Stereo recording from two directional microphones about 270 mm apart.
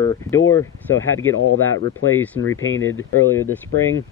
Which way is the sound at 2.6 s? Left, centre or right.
Left.